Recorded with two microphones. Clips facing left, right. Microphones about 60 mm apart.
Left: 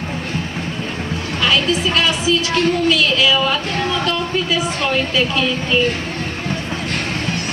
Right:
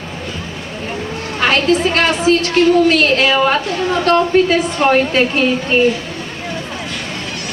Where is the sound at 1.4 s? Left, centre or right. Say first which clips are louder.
Right 4 dB; right.